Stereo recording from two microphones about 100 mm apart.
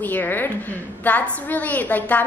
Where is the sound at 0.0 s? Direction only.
20° left (ahead or behind).